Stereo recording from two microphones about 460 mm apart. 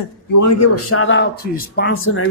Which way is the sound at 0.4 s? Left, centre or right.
Left.